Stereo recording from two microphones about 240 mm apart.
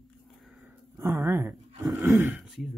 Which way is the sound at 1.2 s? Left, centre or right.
Centre.